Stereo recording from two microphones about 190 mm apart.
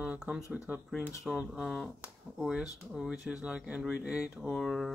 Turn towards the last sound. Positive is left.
turn(degrees=0)  # may be behind; listen again after turning